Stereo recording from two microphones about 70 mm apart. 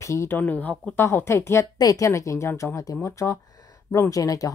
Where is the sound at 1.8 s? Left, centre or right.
Left.